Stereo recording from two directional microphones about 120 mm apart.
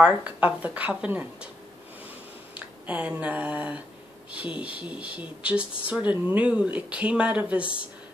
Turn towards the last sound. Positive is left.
turn(degrees=-10)  # may be behind; listen again after turning